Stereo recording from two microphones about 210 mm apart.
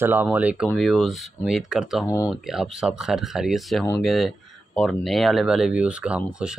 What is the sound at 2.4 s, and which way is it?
Speech, centre (ahead or behind).